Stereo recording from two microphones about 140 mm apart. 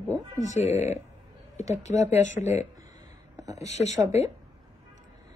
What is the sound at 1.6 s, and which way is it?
Speech, 25° right (ahead or behind).